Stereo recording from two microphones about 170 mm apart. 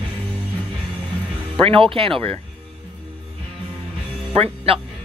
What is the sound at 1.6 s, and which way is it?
Speech, 30° right (ahead or behind).